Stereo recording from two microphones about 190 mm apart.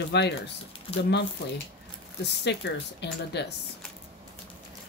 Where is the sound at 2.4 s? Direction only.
65° left (ahead or behind).